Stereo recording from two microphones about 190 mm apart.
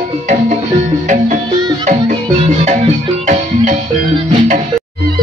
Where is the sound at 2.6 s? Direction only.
35° right (ahead or behind).